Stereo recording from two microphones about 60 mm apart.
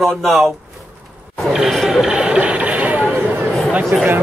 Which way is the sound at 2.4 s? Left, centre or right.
Right.